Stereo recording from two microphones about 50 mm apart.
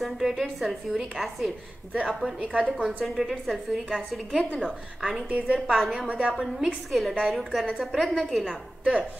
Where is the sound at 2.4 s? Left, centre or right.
Right.